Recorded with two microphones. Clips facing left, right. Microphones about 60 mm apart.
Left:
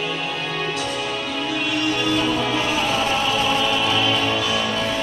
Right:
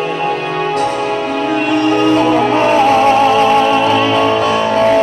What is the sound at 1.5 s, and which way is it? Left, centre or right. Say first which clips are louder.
Music: right 10 dB; right.